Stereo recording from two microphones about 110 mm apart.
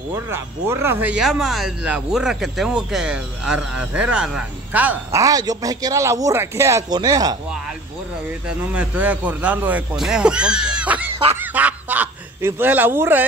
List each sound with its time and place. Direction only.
0.1 s speech: 25° right (ahead or behind)
1.1 s speech: 5° right (ahead or behind)
5.1 s speech: 35° right (ahead or behind)
6.9 s speech: 35° right (ahead or behind)
8.5 s speech: 10° right (ahead or behind)
11.3 s goose: 15° right (ahead or behind)
12.4 s speech: 20° right (ahead or behind)